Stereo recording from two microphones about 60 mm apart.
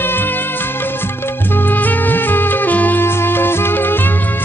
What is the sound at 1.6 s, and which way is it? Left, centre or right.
Music, left.